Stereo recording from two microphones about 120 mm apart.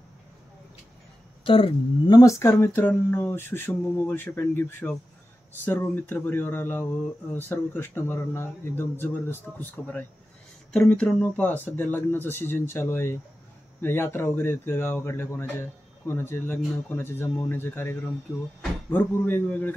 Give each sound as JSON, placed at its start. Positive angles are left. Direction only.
{"t": 1.4, "sound": "speech", "side_deg": 50}
{"t": 2.0, "sound": "speech", "side_deg": 35}
{"t": 2.5, "sound": "speech", "side_deg": 20}